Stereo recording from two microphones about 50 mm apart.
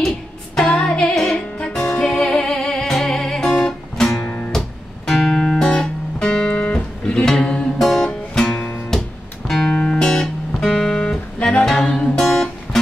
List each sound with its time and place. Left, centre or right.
0.6 s music: centre
7.8 s music: centre
9.5 s music: centre